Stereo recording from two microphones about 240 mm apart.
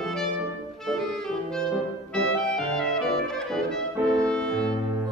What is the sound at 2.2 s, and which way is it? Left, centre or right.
Brass instrument, centre.